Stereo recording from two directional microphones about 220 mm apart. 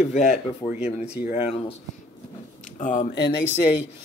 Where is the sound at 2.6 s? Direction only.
35° left (ahead or behind).